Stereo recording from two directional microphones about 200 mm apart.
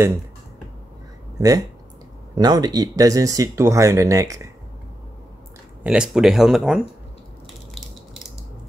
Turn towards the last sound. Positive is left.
turn(degrees=0)  # may be behind; listen again after turning